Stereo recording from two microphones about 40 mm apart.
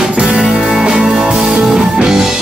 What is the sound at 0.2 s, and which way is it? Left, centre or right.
Music, centre.